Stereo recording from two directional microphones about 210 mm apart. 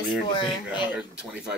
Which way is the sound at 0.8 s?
5° right (ahead or behind).